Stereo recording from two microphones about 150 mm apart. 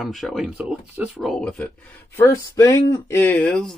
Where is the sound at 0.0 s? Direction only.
Centre (ahead or behind).